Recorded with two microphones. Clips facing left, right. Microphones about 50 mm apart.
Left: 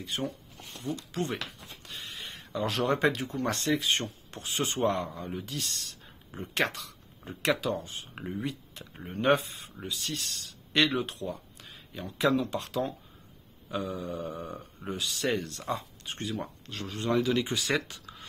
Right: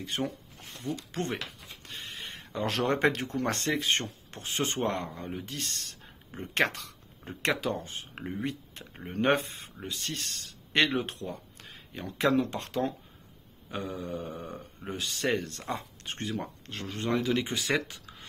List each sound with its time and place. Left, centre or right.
0.0 s speech: right
1.1 s speech: right
8.1 s speech: right
8.5 s speech: right
14.3 s a sound: left
14.9 s speech: right
16.0 s speech: right